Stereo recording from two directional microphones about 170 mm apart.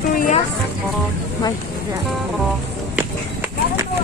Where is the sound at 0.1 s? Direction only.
55° left (ahead or behind).